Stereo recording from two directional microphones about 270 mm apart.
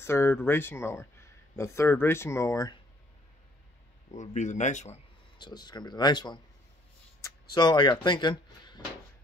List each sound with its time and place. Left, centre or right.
0.0 s speech: centre
4.1 s speech: left
5.4 s speech: centre
7.5 s speech: centre